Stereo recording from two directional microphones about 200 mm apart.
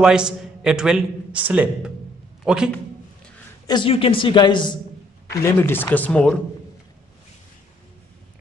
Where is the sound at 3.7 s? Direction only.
25° left (ahead or behind).